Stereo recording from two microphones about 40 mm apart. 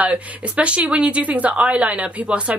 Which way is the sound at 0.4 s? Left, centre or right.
Right.